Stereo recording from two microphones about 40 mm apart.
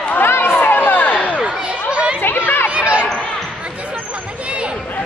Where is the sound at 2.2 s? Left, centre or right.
Left.